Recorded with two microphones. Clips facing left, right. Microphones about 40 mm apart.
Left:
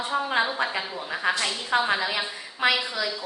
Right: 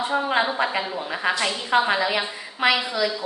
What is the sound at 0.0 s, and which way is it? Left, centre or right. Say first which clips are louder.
A woman's voice: right 3 dB; right.